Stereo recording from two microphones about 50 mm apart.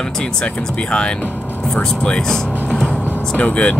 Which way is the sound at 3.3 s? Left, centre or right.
Left.